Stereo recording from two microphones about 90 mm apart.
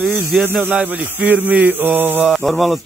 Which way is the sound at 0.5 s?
20° right (ahead or behind).